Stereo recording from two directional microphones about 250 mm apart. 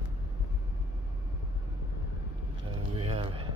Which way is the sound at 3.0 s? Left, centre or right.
Right.